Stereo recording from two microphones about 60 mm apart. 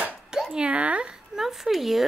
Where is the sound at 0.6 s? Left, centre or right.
Right; by 2.0 s centre.